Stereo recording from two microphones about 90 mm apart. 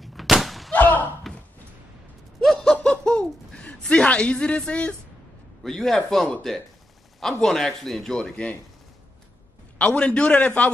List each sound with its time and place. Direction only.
0.0 s artillery fire: centre (ahead or behind)
0.7 s slam: 20° left (ahead or behind)
1.3 s a sound: centre (ahead or behind)
2.4 s laughter: 5° left (ahead or behind)
5.6 s a man's voice: 5° left (ahead or behind)
9.8 s a man's voice: 15° left (ahead or behind)